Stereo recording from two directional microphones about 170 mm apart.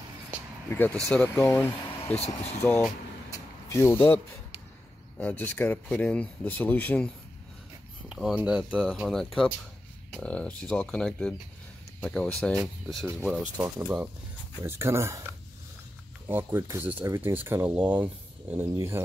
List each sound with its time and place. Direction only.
0.7 s speech: 10° left (ahead or behind)
2.1 s speech: 40° left (ahead or behind)
3.3 s vehicle: 15° left (ahead or behind)
5.1 s speech: 10° left (ahead or behind)
8.1 s speech: 5° right (ahead or behind)
14.6 s speech: 15° right (ahead or behind)